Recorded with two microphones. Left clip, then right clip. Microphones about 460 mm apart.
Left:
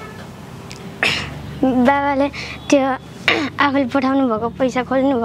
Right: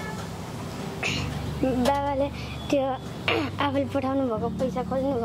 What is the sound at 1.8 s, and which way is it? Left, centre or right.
Speech, left.